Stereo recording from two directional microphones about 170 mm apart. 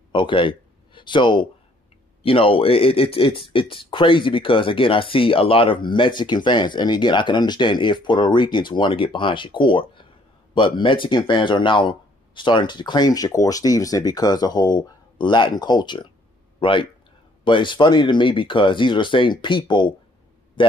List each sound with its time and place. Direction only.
0.1 s speech: 30° left (ahead or behind)